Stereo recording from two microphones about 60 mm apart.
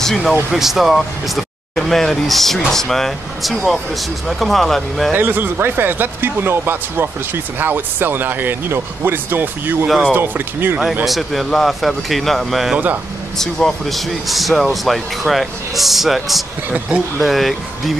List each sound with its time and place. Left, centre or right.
0.0 s speech: centre
0.5 s speech: centre
5.1 s speech: right
11.1 s speech: centre
12.7 s speech: right
13.4 s speech: centre